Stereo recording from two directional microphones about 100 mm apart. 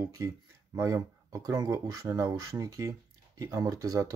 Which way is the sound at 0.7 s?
30° right (ahead or behind).